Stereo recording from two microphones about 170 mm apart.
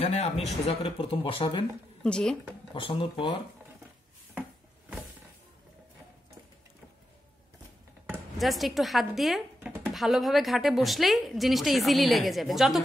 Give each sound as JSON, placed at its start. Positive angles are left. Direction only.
{"t": 0.0, "sound": "speech", "side_deg": 40}
{"t": 2.0, "sound": "a woman's voice", "side_deg": 5}
{"t": 2.7, "sound": "speech", "side_deg": 30}
{"t": 4.4, "sound": "a sound", "side_deg": -5}
{"t": 8.1, "sound": "a woman's voice", "side_deg": 0}